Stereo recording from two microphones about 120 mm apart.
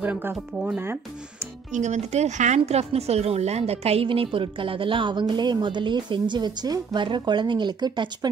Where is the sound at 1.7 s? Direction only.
75° right (ahead or behind).